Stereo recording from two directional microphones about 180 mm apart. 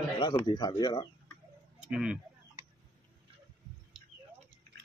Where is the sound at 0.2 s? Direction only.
25° left (ahead or behind).